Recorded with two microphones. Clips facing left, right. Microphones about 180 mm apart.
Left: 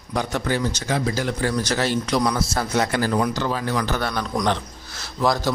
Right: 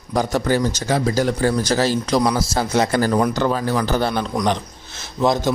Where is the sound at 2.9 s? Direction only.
45° right (ahead or behind).